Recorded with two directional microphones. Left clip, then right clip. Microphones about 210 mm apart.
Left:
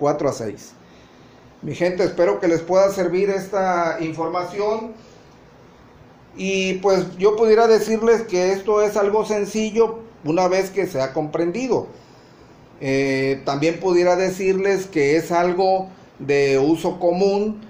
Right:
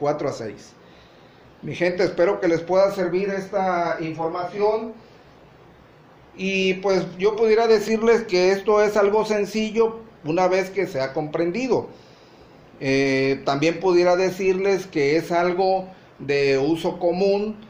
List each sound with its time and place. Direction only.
0.0 s speech: 30° left (ahead or behind)
1.7 s speech: 15° left (ahead or behind); by 3.8 s 45° left (ahead or behind)
6.3 s speech: 30° left (ahead or behind)
8.0 s speech: 5° right (ahead or behind); by 9.8 s 10° left (ahead or behind)
10.2 s speech: 25° left (ahead or behind)